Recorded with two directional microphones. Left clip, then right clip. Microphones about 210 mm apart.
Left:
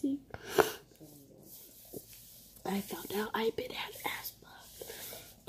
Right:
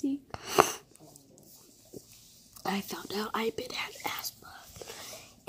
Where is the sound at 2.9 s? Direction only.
Centre (ahead or behind).